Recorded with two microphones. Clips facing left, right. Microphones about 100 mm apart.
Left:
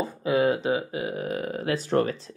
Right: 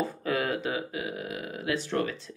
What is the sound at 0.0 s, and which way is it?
Speech, 20° left (ahead or behind).